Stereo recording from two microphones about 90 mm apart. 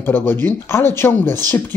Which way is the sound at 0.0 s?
25° left (ahead or behind).